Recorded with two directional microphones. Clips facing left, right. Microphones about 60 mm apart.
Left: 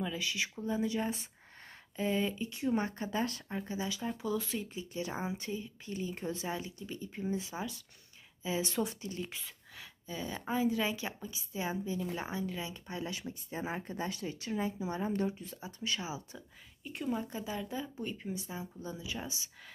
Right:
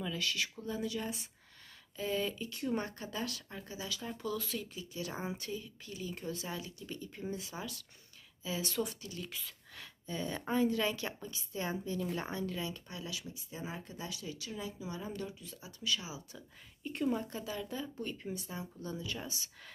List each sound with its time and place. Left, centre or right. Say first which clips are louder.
0.0 s speech: left 1 dB; centre
9.8 s speech: right 1 dB; centre
12.9 s speech: left 4 dB; left
16.3 s speech: left 1 dB; centre
17.2 s speech: left 2 dB; centre